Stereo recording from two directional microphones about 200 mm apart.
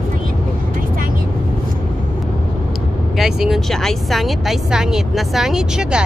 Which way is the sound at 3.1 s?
Centre (ahead or behind).